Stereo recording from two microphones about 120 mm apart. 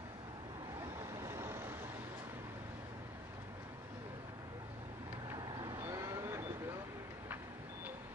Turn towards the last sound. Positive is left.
turn(degrees=-25)  # may be behind; listen again after turning